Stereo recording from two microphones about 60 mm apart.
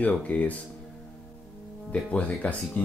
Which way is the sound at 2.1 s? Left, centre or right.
Left.